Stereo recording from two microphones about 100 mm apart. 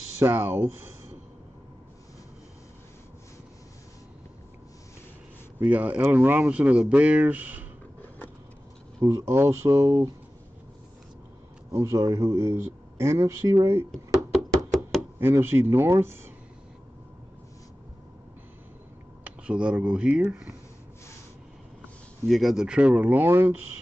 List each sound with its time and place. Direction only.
0.2 s speech: 25° right (ahead or behind)
5.6 s speech: 15° right (ahead or behind)
9.0 s speech: 30° right (ahead or behind)
11.7 s speech: 30° right (ahead or behind)
14.3 s chopping: centre (ahead or behind)
15.1 s speech: 25° right (ahead or behind)
19.2 s speech: 10° right (ahead or behind)
22.3 s speech: centre (ahead or behind); by 23.5 s 20° right (ahead or behind)